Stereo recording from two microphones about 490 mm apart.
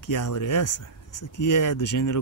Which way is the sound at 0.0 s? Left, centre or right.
Left.